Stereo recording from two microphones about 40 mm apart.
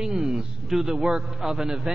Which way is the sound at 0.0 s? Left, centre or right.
Right.